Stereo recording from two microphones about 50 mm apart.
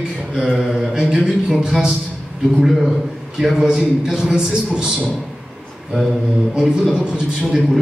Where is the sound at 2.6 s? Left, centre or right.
Centre.